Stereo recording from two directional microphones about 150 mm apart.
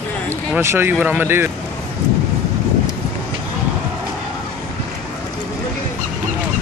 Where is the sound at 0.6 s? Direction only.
15° right (ahead or behind).